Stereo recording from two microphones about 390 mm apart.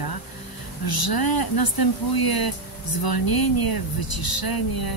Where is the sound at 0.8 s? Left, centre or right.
Left.